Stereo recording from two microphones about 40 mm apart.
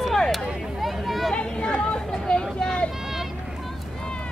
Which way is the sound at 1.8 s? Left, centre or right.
Centre.